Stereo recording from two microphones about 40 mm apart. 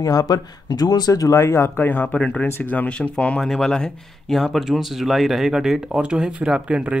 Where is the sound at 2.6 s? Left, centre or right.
Left.